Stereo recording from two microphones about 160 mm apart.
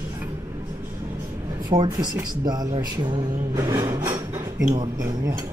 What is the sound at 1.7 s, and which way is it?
Speech, 25° right (ahead or behind).